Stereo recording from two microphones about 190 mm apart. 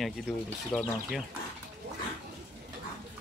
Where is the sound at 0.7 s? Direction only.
5° left (ahead or behind).